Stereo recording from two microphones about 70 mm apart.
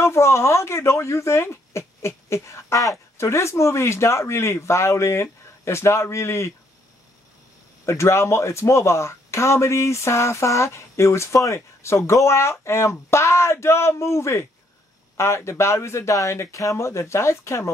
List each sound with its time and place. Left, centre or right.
0.0 s speech: left
7.8 s speech: left